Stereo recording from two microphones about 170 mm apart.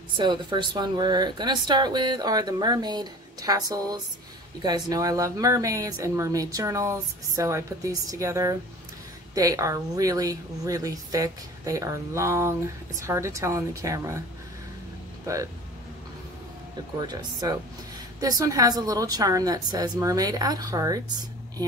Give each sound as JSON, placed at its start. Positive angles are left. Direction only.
{"t": 0.2, "sound": "a woman's voice", "side_deg": -30}
{"t": 17.0, "sound": "a woman's voice", "side_deg": -25}